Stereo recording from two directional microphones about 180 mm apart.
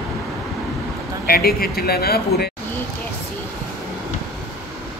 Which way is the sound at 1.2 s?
55° left (ahead or behind).